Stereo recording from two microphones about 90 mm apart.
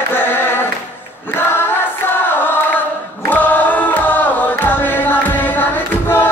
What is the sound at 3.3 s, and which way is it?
Music, 20° left (ahead or behind).